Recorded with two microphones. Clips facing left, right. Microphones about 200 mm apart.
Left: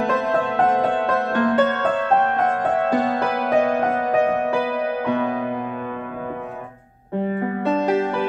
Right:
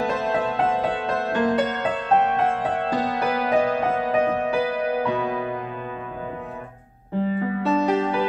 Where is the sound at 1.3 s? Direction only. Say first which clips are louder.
Left 2 dB; 60° left (ahead or behind).